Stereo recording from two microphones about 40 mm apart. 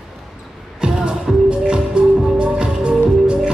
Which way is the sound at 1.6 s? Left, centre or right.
Right.